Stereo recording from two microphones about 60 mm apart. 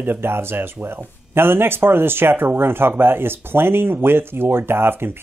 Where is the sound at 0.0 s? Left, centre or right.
Right.